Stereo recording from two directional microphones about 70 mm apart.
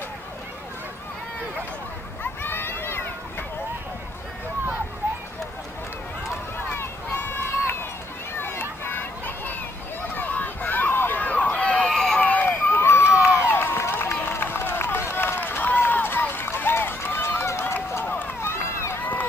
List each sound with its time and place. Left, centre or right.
2.4 s a sound: left
6.7 s run: left
8.4 s a sound: left
11.8 s run: centre
12.2 s run: left
13.4 s crowd: left
14.1 s run: left
18.5 s run: left